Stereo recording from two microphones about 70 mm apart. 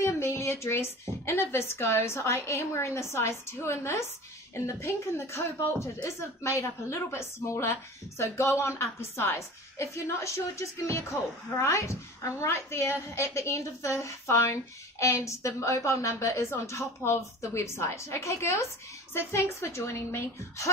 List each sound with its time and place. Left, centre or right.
0.0 s a woman's voice: left